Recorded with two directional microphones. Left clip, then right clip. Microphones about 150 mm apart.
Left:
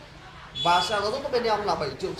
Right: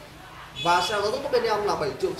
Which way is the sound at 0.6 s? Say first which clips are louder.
Even; centre (ahead or behind).